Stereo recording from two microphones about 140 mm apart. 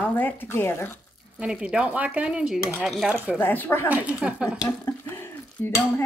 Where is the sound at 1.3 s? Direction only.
5° right (ahead or behind).